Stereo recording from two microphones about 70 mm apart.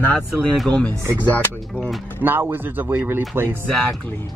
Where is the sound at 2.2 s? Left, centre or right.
Right.